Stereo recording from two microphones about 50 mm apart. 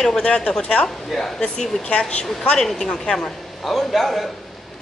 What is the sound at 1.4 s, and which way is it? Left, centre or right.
A woman's voice, centre.